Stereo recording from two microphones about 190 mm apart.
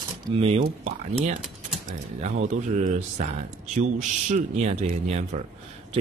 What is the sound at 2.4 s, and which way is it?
Speech, 40° right (ahead or behind).